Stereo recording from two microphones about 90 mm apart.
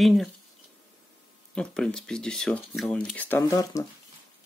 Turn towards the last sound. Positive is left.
turn(degrees=40)  # may be behind; listen again after turning